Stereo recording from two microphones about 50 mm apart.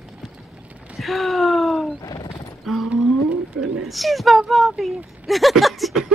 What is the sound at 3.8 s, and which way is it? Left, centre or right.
Speech, centre.